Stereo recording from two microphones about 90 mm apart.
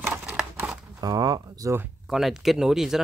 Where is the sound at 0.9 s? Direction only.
45° right (ahead or behind).